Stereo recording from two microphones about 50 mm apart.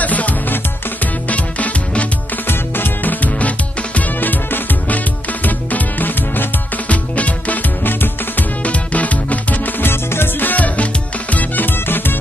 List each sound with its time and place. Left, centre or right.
0.0 s music: left
2.4 s music: left
6.9 s music: left
8.6 s music: left
9.8 s music: left
10.5 s music: left